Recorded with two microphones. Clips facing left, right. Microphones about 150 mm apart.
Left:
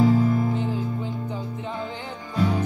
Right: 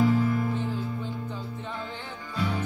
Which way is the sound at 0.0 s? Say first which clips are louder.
Left 4 dB; 40° left (ahead or behind).